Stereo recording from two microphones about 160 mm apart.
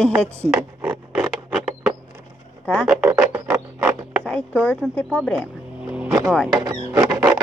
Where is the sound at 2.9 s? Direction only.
10° right (ahead or behind).